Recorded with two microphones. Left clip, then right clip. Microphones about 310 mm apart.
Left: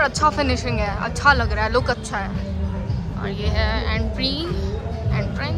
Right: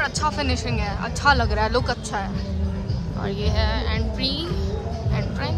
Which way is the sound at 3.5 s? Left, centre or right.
Centre.